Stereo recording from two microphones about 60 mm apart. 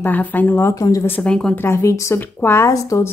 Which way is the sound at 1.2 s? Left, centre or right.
Centre.